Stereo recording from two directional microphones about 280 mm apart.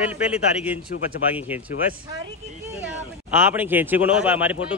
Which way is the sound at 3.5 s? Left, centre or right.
Centre.